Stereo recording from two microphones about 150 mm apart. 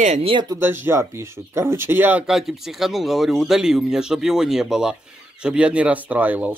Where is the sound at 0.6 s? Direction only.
15° right (ahead or behind).